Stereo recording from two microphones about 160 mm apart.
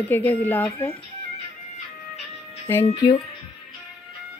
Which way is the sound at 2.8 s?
35° left (ahead or behind).